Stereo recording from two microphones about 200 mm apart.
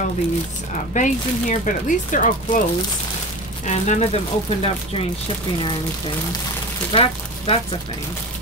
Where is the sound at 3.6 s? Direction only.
35° left (ahead or behind).